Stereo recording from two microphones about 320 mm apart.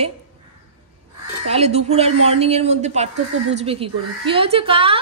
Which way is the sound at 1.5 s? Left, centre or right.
Centre.